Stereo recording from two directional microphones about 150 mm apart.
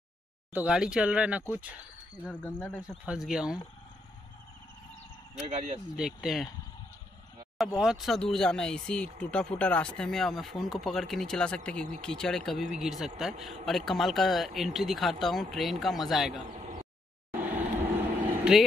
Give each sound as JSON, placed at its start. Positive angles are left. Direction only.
{"t": 0.5, "sound": "speech", "side_deg": -10}
{"t": 2.2, "sound": "speech", "side_deg": 10}
{"t": 3.1, "sound": "speech", "side_deg": -5}
{"t": 5.5, "sound": "speech", "side_deg": -50}
{"t": 5.9, "sound": "speech", "side_deg": -5}
{"t": 7.5, "sound": "speech", "side_deg": -5}
{"t": 16.5, "sound": "a sound", "side_deg": -45}
{"t": 17.3, "sound": "vehicle", "side_deg": -10}